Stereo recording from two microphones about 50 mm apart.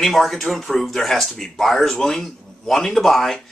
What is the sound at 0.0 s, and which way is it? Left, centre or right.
Speech, centre.